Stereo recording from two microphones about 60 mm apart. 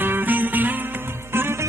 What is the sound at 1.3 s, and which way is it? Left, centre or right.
Music, right.